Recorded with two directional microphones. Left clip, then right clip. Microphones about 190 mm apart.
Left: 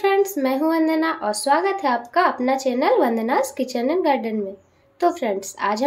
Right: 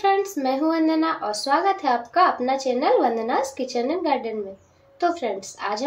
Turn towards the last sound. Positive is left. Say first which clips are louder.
# left 5 dB
turn(degrees=40)  # may be behind; listen again after turning